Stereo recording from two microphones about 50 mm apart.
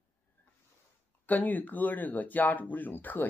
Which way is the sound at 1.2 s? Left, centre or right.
Left.